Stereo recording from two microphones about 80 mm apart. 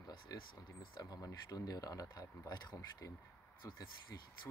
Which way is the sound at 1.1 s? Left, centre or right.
Left.